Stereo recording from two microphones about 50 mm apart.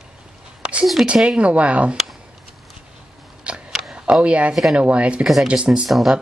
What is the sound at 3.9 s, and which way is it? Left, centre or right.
Speech, right.